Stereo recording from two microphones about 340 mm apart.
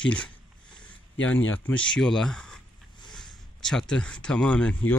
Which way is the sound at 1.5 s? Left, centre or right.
Centre.